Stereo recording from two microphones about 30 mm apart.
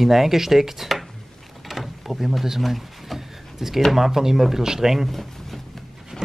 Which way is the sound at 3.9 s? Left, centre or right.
Centre.